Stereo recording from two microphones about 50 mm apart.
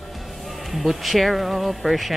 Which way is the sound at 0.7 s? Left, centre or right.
Centre.